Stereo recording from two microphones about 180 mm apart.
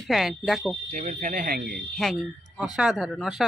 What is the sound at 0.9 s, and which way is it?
Speech, 40° right (ahead or behind).